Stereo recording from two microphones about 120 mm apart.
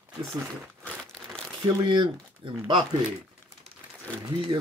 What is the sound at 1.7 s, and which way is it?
Speech, 40° right (ahead or behind).